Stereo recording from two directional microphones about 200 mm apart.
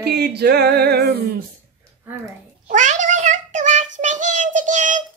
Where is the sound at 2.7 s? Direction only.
40° right (ahead or behind).